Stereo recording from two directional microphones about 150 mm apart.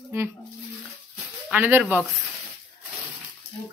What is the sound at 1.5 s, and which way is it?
Speech, 10° right (ahead or behind).